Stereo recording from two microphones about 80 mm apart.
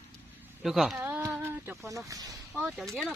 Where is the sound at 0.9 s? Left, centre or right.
Right.